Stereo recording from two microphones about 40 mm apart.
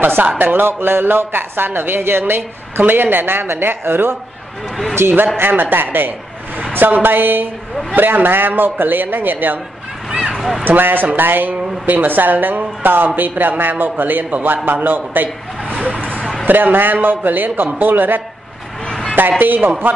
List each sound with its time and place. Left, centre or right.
0.0 s a man's voice: right
2.8 s a man's voice: right
5.4 s speech: right
10.6 s a man's voice: right
15.7 s vehicle: left
16.4 s a man's voice: right